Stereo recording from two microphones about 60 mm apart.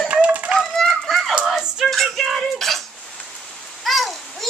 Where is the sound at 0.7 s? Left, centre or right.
Centre.